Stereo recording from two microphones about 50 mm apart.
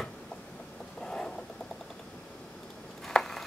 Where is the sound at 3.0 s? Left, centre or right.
Centre.